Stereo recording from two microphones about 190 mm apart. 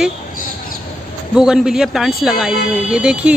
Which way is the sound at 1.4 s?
5° right (ahead or behind).